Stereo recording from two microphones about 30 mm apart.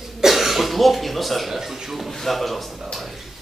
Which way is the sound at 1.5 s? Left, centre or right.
Centre.